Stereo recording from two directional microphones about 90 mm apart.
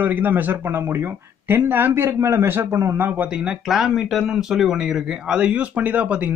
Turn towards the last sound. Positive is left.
turn(degrees=-15)  # may be behind; listen again after turning